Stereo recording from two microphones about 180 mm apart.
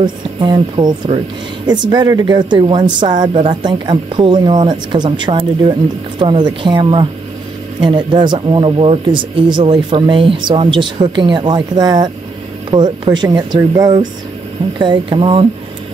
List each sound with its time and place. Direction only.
0.0 s speech: 25° right (ahead or behind)